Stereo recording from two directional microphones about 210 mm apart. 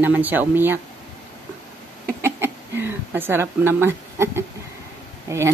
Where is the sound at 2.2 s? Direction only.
10° right (ahead or behind).